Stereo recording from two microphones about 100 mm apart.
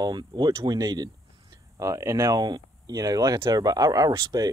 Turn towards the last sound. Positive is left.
turn(degrees=-40)  # may be behind; listen again after turning